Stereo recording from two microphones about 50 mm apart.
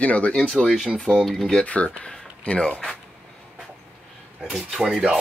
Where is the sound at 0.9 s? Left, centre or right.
Centre.